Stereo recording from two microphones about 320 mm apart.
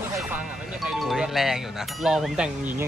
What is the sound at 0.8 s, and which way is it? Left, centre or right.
Speech, centre.